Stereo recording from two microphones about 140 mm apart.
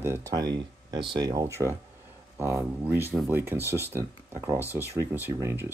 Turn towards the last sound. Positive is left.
turn(degrees=-15)  # may be behind; listen again after turning